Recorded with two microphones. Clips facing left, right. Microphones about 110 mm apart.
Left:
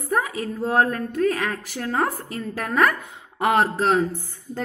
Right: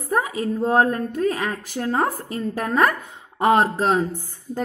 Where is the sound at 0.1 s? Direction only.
15° right (ahead or behind).